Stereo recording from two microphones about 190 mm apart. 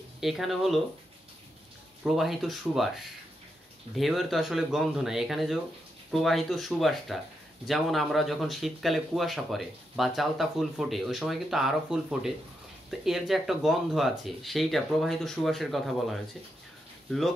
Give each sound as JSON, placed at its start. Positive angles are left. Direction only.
{"t": 0.2, "sound": "speech", "side_deg": 0}
{"t": 2.0, "sound": "speech", "side_deg": 0}
{"t": 3.9, "sound": "speech", "side_deg": 0}